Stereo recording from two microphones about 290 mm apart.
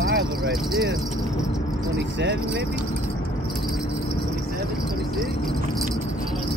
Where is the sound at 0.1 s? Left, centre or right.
Right.